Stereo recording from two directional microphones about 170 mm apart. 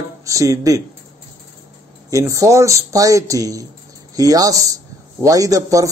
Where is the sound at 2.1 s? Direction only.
20° right (ahead or behind).